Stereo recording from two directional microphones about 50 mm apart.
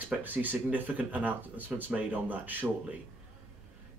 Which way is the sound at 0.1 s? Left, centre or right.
Right.